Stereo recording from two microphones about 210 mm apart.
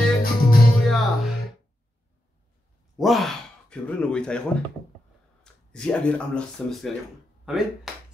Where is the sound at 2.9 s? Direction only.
Centre (ahead or behind).